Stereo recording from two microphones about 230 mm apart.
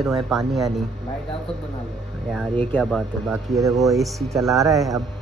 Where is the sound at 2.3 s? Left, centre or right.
Centre.